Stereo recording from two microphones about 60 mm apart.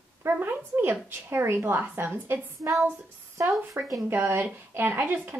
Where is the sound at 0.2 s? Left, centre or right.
Right.